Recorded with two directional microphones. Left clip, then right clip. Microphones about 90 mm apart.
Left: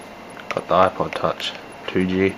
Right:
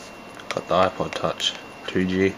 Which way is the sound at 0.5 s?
15° right (ahead or behind).